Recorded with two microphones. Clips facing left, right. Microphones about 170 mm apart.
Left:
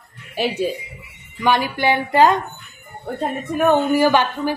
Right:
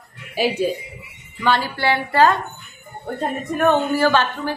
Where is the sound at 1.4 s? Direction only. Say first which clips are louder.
Left 2 dB; 15° left (ahead or behind).